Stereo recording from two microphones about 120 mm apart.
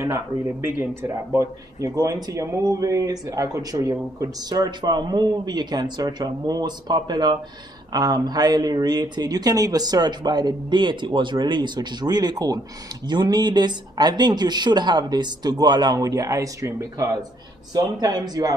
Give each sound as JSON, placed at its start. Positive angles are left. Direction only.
{"t": 0.0, "sound": "speech", "side_deg": -25}